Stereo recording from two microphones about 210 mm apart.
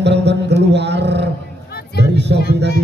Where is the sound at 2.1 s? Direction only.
55° right (ahead or behind).